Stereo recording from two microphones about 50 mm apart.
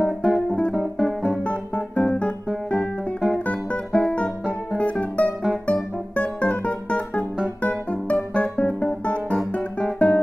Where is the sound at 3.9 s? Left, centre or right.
Centre.